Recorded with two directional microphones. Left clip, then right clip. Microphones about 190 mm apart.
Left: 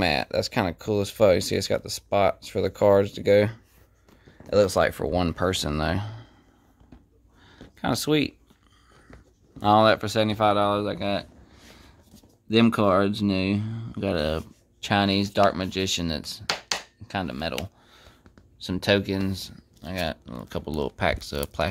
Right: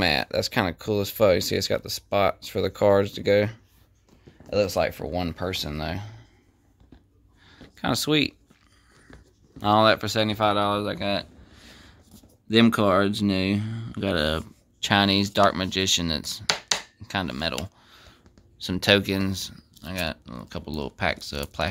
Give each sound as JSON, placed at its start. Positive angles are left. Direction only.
{"t": 0.0, "sound": "speech", "side_deg": 0}
{"t": 4.4, "sound": "speech", "side_deg": 15}
{"t": 7.4, "sound": "a sound", "side_deg": 5}
{"t": 9.6, "sound": "speech", "side_deg": 5}
{"t": 12.4, "sound": "speech", "side_deg": 0}
{"t": 17.0, "sound": "a sound", "side_deg": -5}
{"t": 18.6, "sound": "speech", "side_deg": -5}